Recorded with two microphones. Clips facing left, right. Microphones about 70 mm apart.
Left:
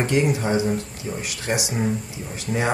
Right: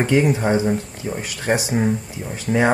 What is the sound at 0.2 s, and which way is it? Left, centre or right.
Speech, right.